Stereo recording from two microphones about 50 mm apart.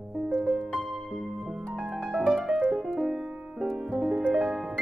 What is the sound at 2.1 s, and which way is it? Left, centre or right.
Music, centre.